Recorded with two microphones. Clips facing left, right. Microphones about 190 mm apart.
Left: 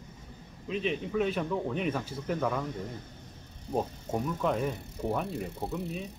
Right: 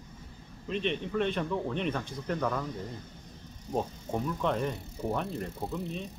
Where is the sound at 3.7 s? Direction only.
5° left (ahead or behind).